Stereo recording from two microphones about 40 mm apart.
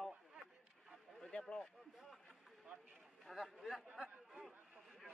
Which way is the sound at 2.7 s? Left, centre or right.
Right.